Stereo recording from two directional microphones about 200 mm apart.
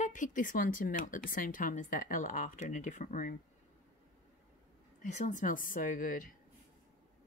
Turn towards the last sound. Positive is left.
turn(degrees=45)  # may be behind; listen again after turning